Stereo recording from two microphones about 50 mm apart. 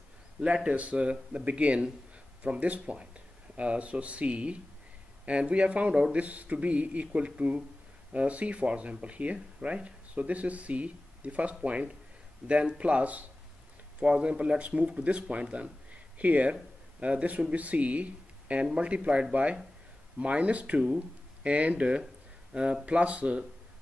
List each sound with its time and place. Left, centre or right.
0.7 s speech: right